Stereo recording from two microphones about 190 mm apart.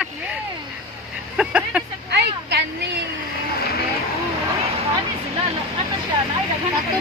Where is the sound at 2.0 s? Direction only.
60° right (ahead or behind).